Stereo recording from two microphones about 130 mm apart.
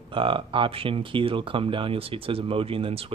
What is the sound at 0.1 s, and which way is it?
Speech, 40° right (ahead or behind).